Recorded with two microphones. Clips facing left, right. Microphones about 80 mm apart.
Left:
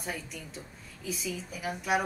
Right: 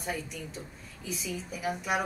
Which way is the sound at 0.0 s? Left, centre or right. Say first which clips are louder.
Right 3 dB; centre.